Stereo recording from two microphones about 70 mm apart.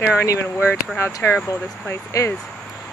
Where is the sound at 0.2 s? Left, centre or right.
Left.